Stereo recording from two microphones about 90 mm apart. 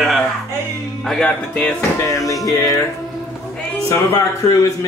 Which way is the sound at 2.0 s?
40° left (ahead or behind).